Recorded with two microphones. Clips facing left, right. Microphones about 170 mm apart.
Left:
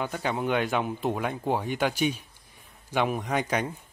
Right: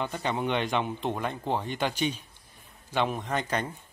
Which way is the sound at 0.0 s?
5° left (ahead or behind).